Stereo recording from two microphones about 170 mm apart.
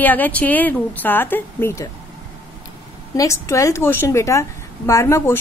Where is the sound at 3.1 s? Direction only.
15° left (ahead or behind).